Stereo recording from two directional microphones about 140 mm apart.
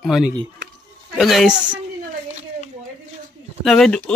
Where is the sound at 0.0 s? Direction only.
Centre (ahead or behind).